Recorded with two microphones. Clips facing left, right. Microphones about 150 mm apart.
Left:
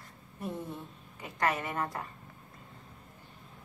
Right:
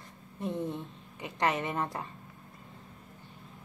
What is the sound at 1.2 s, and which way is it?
Speech, 25° right (ahead or behind).